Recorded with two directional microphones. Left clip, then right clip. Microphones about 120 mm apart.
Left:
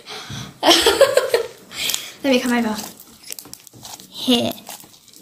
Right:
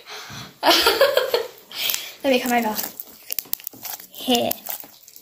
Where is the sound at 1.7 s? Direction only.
50° left (ahead or behind).